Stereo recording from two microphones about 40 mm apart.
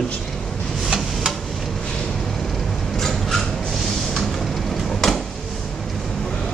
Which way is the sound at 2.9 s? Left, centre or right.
Centre.